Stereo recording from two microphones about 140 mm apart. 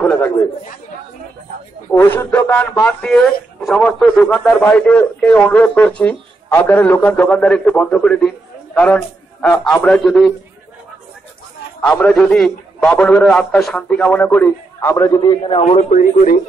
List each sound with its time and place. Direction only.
0.0 s chatter: 15° left (ahead or behind)
2.0 s speech: 15° left (ahead or behind)
11.8 s speech: 10° left (ahead or behind)
15.0 s a man's voice: 35° left (ahead or behind)
15.7 s a man's voice: 65° left (ahead or behind)